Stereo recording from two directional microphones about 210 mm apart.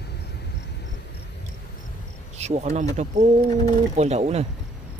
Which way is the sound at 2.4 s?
30° right (ahead or behind).